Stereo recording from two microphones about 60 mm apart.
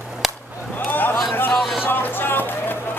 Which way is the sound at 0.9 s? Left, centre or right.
Left.